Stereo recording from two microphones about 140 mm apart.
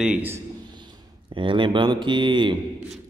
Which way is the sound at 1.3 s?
35° right (ahead or behind).